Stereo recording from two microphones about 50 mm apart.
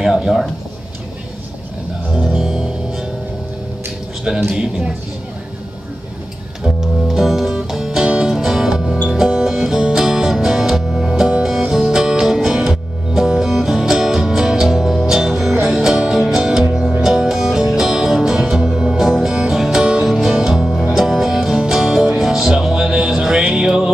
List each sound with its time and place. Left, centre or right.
0.0 s a sound: centre
2.1 s music: centre
4.5 s a man's voice: centre
6.6 s music: centre